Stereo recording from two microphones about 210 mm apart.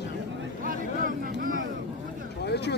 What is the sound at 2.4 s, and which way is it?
Speech, 50° left (ahead or behind).